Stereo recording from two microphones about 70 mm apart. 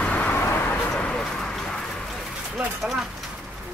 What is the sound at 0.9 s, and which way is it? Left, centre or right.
Bird, centre.